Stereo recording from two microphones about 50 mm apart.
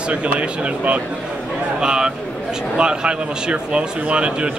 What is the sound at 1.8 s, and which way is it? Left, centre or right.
A man's voice, centre.